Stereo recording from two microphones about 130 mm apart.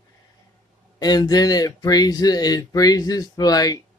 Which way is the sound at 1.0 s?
30° left (ahead or behind).